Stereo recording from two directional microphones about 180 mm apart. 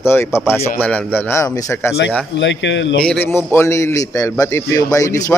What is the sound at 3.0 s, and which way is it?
A man's voice, 10° left (ahead or behind).